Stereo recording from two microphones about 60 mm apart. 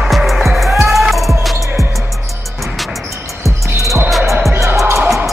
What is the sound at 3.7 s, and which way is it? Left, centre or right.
Music, right.